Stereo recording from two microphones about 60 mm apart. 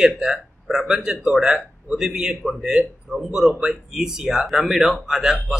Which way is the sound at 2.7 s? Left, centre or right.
Centre.